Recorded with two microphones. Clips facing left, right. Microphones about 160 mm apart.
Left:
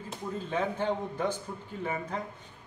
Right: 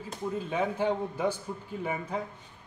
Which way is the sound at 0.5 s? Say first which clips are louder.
Right 1 dB; 10° right (ahead or behind).